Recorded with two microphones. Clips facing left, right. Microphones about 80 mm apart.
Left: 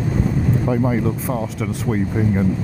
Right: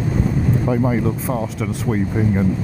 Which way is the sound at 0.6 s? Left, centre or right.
Right.